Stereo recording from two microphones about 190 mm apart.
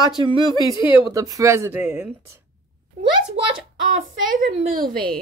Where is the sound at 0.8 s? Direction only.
25° left (ahead or behind).